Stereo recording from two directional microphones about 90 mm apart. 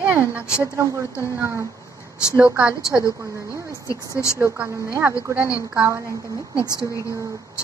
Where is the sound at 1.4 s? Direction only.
30° right (ahead or behind).